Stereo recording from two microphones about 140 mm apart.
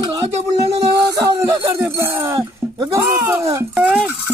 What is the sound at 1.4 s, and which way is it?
Music, 20° right (ahead or behind).